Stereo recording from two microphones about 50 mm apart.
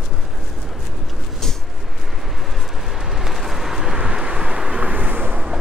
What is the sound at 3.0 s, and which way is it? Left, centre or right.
Vehicle, centre.